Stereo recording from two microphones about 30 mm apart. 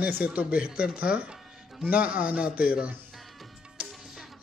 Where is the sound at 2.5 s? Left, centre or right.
Right.